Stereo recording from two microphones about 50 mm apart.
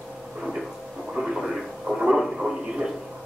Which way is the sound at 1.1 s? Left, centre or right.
Centre.